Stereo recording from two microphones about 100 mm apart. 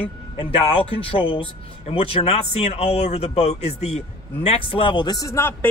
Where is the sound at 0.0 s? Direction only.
65° left (ahead or behind); by 5.3 s 40° left (ahead or behind).